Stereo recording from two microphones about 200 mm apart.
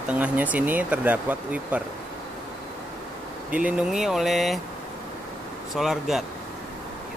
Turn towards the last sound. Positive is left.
turn(degrees=0)  # may be behind; listen again after turning